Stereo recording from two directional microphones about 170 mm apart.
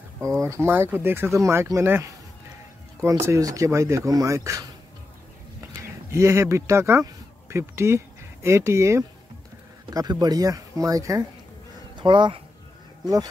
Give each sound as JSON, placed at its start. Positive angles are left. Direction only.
{"t": 0.2, "sound": "speech", "side_deg": -15}
{"t": 5.7, "sound": "speech", "side_deg": -15}